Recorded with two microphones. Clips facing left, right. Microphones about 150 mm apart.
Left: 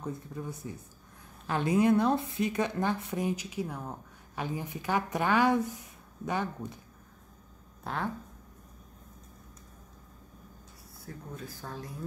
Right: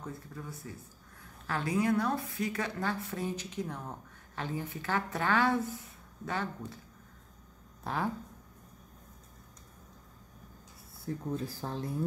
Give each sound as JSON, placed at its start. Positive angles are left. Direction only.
{"t": 0.0, "sound": "a woman's voice", "side_deg": 20}
{"t": 7.8, "sound": "speech", "side_deg": 0}
{"t": 11.3, "sound": "speech", "side_deg": -30}